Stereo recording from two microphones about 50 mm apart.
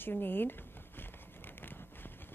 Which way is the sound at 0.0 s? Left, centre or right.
Left.